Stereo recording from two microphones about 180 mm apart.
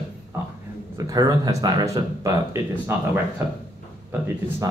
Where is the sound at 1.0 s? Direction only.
20° right (ahead or behind).